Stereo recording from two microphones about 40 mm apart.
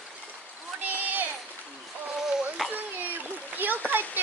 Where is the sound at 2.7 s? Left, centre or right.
Right.